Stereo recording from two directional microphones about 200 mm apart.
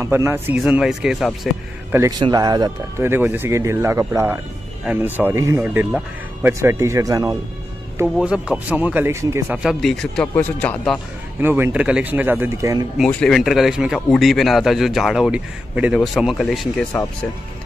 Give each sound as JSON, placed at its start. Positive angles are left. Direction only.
{"t": 0.0, "sound": "speech", "side_deg": -10}
{"t": 2.0, "sound": "speech", "side_deg": -20}
{"t": 8.2, "sound": "a man's voice", "side_deg": -5}
{"t": 11.4, "sound": "speech", "side_deg": -10}
{"t": 12.9, "sound": "a man's voice", "side_deg": 0}